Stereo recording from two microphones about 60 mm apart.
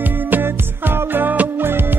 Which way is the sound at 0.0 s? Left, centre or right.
Right.